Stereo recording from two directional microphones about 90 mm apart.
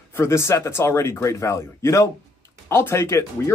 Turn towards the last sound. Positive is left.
turn(degrees=30)  # may be behind; listen again after turning